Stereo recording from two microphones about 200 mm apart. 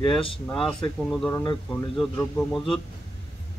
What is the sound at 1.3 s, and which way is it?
A man's voice, 15° left (ahead or behind).